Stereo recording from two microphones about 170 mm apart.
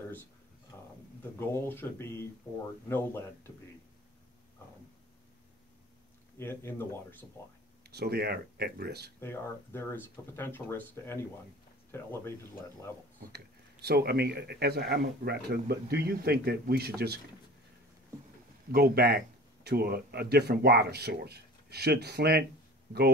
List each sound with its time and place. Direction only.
1.5 s speech: 15° left (ahead or behind)
6.3 s speech: 15° left (ahead or behind)
7.8 s speech: 75° right (ahead or behind)
9.2 s speech: 15° left (ahead or behind)
13.3 s speech: 70° right (ahead or behind)
18.7 s speech: 65° right (ahead or behind)